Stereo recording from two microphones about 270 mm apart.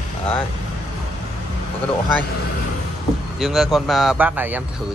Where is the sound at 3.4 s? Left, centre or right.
Centre.